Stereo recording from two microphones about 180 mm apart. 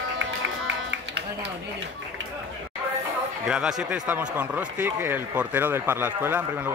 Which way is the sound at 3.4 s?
5° right (ahead or behind).